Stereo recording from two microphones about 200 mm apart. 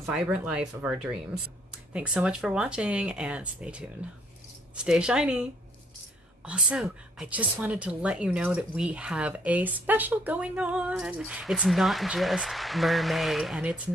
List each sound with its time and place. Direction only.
0.0 s speech: 5° right (ahead or behind)
6.4 s speech: 5° right (ahead or behind)